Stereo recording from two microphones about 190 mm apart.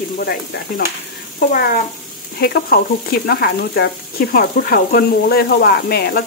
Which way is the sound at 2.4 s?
55° left (ahead or behind).